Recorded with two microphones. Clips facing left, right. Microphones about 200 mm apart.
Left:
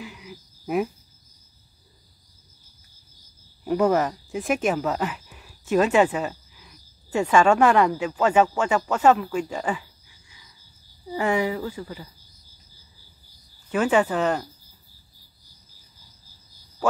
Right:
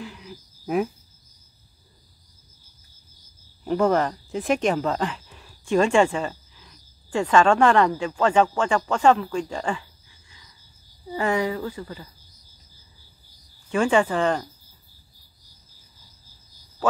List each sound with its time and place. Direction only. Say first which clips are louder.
0.0 s a sound: right 1 dB; 5° left (ahead or behind)
3.6 s speech: even; 10° left (ahead or behind)
11.1 s speech: even; 10° left (ahead or behind)
13.7 s speech: even; 5° left (ahead or behind)